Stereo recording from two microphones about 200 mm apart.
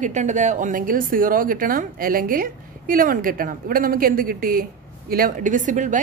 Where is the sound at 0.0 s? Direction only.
35° right (ahead or behind).